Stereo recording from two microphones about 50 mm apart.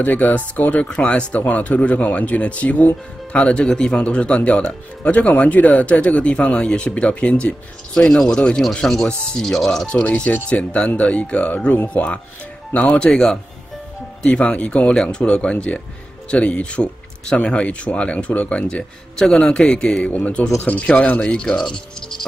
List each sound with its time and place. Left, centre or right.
0.0 s speech: left
0.8 s a man's voice: left
8.8 s a man's voice: centre
9.8 s speech: centre
14.2 s a man's voice: left